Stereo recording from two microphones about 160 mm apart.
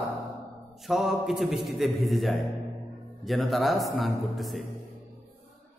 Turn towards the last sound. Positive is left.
turn(degrees=0)  # may be behind; listen again after turning